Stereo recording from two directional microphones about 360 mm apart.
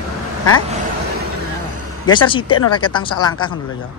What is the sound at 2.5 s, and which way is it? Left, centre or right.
Speech, left.